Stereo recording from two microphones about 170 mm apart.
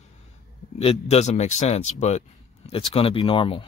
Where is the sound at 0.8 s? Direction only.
40° left (ahead or behind).